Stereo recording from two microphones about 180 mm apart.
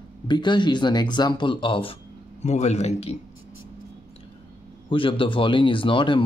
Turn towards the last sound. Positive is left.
turn(degrees=30)  # may be behind; listen again after turning